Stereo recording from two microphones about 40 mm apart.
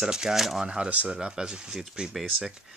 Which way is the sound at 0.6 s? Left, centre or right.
Right.